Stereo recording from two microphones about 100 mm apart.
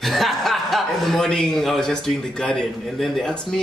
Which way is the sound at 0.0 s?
Centre (ahead or behind).